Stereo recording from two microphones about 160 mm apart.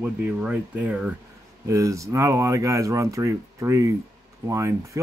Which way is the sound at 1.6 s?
20° right (ahead or behind).